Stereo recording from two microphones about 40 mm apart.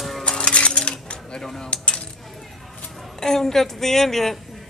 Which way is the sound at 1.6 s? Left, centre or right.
Left.